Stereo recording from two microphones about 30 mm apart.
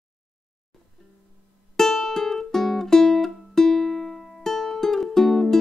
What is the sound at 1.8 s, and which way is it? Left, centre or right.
Music, centre.